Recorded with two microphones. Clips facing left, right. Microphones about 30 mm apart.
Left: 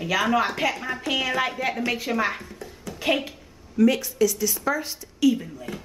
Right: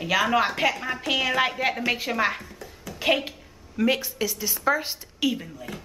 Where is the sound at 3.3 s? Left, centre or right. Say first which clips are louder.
Right 2 dB; right.